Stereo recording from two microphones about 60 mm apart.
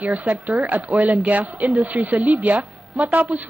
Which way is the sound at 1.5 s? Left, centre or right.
Centre.